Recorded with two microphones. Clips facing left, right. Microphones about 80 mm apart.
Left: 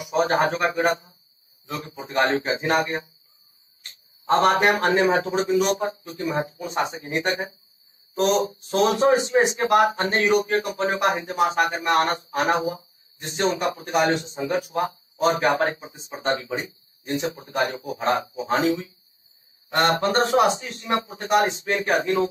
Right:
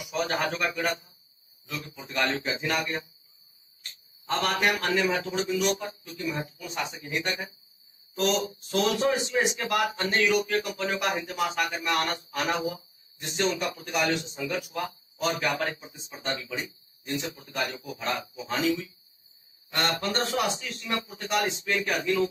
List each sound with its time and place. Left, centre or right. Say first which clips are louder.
0.0 s a man's voice: left 8 dB; left